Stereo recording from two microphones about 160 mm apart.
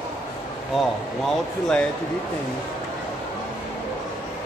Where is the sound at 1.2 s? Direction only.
5° left (ahead or behind).